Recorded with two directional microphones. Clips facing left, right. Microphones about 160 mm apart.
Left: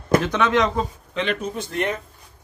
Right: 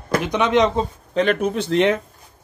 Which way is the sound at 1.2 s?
55° right (ahead or behind).